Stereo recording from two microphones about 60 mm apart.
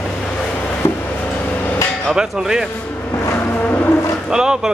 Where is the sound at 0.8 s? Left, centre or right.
Left.